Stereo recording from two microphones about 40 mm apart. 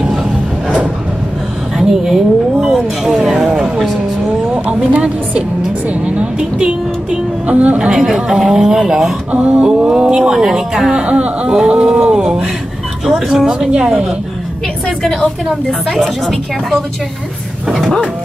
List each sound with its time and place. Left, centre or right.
1.8 s a woman's voice: centre
3.2 s a sound: centre
3.4 s music: right
4.9 s a woman's voice: right
5.6 s speech: right
7.8 s speech: centre
9.3 s mantra: right
9.8 s speech: right
10.4 s speech: centre
10.9 s speech: right
13.0 s speech: centre
13.7 s speech: right
15.9 s speech: centre